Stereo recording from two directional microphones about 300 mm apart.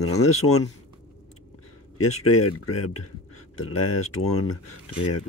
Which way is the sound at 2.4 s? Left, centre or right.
Left.